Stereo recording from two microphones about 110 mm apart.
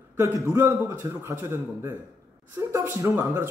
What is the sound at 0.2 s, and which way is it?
Speech, 25° right (ahead or behind).